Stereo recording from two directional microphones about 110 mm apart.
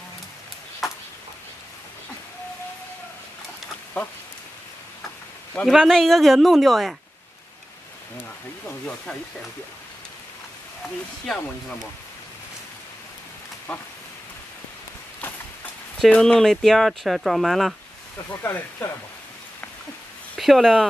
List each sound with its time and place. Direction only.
0.8 s ping: centre (ahead or behind)
4.0 s a sound: 10° left (ahead or behind)
5.7 s speech: 5° left (ahead or behind)
13.7 s a sound: 10° left (ahead or behind)
16.1 s speech: 5° left (ahead or behind)
18.4 s speech: 25° left (ahead or behind)
20.3 s speech: centre (ahead or behind)